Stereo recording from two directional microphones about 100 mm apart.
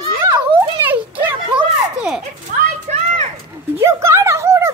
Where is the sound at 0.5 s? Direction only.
15° right (ahead or behind).